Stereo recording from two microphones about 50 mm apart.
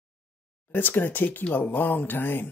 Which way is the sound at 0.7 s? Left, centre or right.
Left.